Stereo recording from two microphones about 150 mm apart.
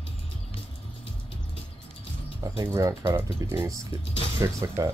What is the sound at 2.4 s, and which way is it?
Speech, 20° right (ahead or behind).